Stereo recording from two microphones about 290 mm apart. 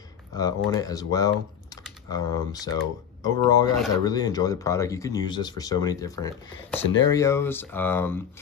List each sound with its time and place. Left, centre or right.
0.3 s speech: centre